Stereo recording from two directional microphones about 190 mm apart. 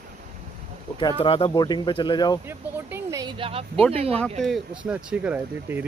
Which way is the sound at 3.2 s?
30° right (ahead or behind).